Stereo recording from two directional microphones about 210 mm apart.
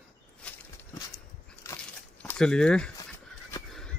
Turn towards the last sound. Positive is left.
turn(degrees=5)  # may be behind; listen again after turning